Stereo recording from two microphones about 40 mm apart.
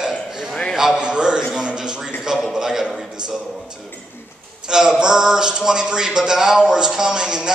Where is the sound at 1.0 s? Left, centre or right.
Right.